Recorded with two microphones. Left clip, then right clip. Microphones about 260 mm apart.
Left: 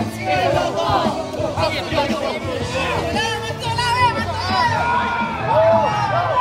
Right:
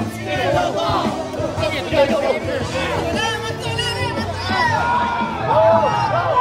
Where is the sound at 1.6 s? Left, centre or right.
Centre.